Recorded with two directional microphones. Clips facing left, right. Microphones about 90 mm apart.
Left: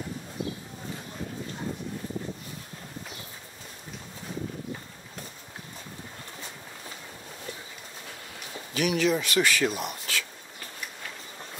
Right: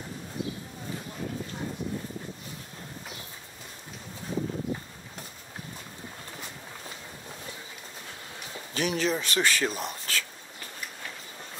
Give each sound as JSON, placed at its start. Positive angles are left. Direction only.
{"t": 8.7, "sound": "speech", "side_deg": -35}